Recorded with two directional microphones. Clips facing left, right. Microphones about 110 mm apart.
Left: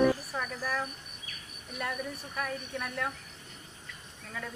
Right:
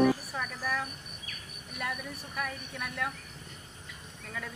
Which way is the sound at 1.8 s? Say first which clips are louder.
Left 2 dB; centre (ahead or behind).